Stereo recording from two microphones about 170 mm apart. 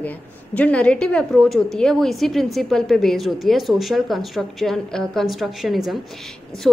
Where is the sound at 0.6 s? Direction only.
5° left (ahead or behind).